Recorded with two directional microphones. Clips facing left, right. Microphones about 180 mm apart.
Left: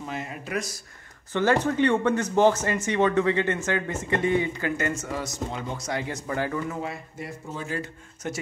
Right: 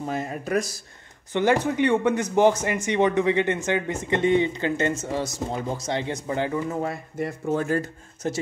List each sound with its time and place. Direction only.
0.0 s speech: 40° right (ahead or behind)
1.3 s speech: 15° right (ahead or behind)
6.7 s speech: 45° right (ahead or behind)
8.2 s speech: 35° right (ahead or behind)